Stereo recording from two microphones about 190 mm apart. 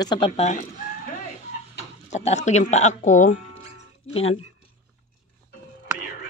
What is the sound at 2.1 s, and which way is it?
Speech, 35° left (ahead or behind).